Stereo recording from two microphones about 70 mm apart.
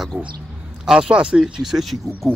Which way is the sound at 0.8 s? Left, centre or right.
Centre.